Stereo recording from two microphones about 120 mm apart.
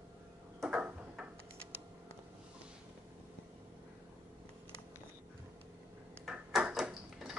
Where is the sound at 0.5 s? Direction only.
10° right (ahead or behind).